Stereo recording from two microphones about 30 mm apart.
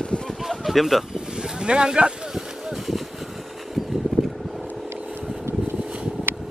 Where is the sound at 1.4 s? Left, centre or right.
Right.